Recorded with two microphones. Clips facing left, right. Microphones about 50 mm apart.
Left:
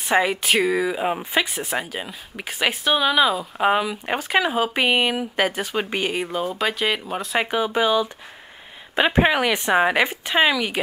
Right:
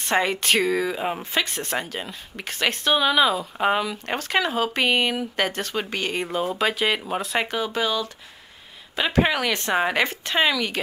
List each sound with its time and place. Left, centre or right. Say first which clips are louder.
0.0 s speech: left 2 dB; centre
6.1 s speech: even; centre
7.4 s speech: left 4 dB; centre